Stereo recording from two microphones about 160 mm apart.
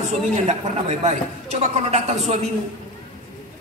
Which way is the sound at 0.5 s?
45° right (ahead or behind).